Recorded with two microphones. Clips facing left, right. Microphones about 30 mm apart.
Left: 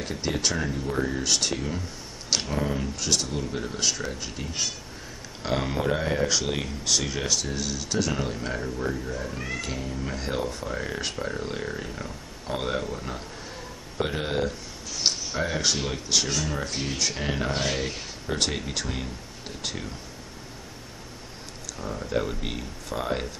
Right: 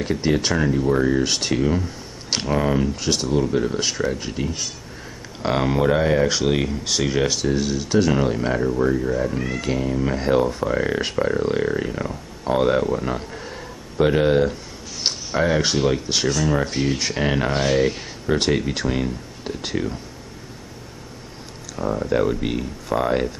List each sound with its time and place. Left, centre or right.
0.0 s a man's voice: centre
21.7 s speech: right
22.1 s speech: centre